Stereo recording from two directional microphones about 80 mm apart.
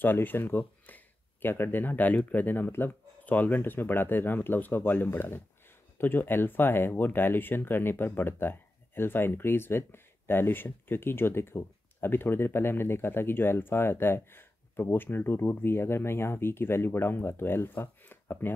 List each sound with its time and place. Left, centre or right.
0.0 s speech: left